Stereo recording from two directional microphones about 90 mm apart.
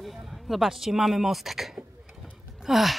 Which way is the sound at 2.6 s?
Centre (ahead or behind).